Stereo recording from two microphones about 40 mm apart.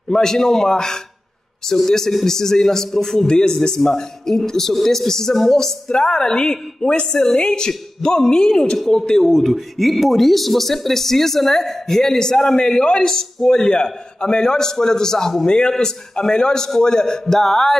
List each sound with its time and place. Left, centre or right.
0.1 s a man's voice: centre
9.3 s a man's voice: centre